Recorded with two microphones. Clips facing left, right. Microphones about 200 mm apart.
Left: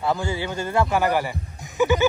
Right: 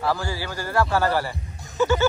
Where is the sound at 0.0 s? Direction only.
20° left (ahead or behind).